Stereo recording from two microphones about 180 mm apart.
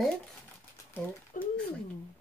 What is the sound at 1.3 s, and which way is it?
Speech, 45° left (ahead or behind).